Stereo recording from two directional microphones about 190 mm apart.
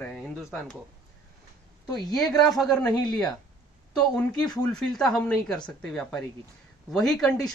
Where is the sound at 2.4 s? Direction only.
Centre (ahead or behind).